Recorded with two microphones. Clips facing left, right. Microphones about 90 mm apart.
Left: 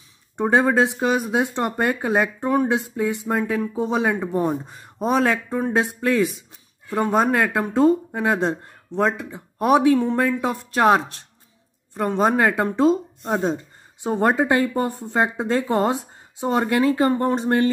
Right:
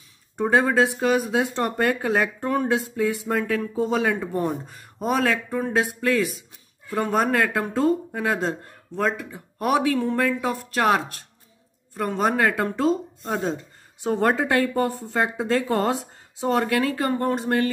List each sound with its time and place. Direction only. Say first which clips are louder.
0.4 s speech: left 2 dB; 20° left (ahead or behind)